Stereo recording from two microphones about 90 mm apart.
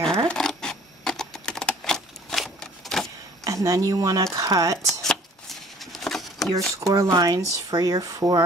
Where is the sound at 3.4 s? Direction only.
35° right (ahead or behind).